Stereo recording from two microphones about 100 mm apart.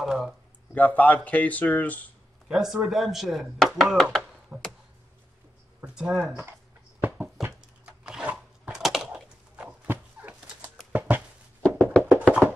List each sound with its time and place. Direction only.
0.0 s speech: 5° right (ahead or behind)
0.7 s speech: 15° left (ahead or behind)
2.4 s speech: 5° right (ahead or behind)
4.5 s speech: 10° right (ahead or behind)
5.9 s speech: 5° right (ahead or behind)
7.0 s a sound: 20° right (ahead or behind)
11.6 s music: 10° left (ahead or behind)
12.0 s music: 15° right (ahead or behind)